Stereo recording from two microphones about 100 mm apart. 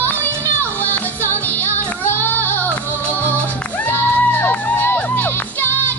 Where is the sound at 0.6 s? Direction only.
15° left (ahead or behind).